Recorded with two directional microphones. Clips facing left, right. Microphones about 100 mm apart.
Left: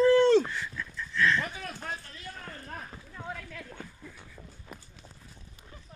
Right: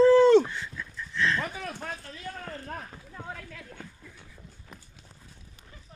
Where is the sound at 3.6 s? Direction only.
10° left (ahead or behind).